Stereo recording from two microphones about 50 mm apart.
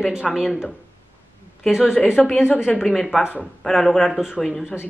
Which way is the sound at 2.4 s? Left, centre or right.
Left.